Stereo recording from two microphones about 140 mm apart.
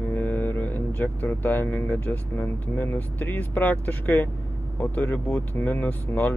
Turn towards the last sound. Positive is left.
turn(degrees=10)  # may be behind; listen again after turning